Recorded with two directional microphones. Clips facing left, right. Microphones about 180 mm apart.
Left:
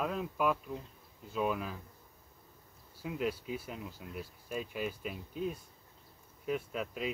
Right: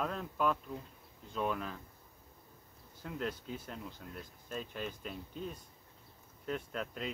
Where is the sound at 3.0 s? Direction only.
10° left (ahead or behind).